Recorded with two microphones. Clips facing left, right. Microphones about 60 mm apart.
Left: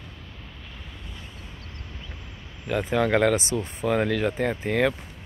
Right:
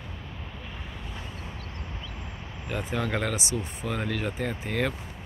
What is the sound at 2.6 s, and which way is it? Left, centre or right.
Speech, left.